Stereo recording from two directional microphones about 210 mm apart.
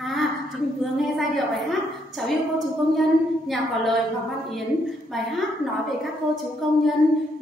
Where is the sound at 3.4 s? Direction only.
Centre (ahead or behind).